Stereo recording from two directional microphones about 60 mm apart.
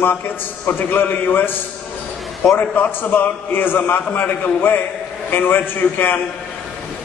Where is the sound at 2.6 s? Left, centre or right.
Left.